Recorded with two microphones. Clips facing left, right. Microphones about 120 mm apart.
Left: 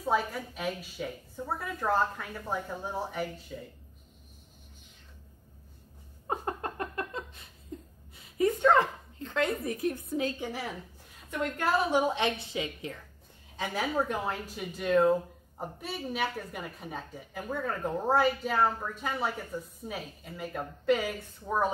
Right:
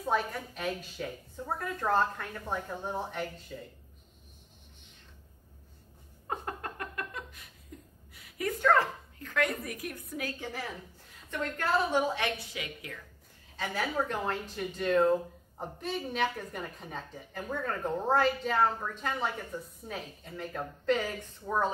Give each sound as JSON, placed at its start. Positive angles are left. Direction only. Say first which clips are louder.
{"t": 0.0, "sound": "speech", "louder": "left 2 dB", "side_deg": 10}
{"t": 6.2, "sound": "a sound", "louder": "left 4 dB", "side_deg": 25}
{"t": 8.1, "sound": "speech", "louder": "left 7 dB", "side_deg": 25}
{"t": 10.4, "sound": "speech", "louder": "left 3 dB", "side_deg": 15}
{"t": 13.6, "sound": "speech", "louder": "left 2 dB", "side_deg": 15}